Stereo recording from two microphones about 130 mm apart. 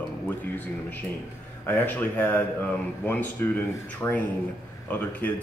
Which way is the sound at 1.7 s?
15° left (ahead or behind).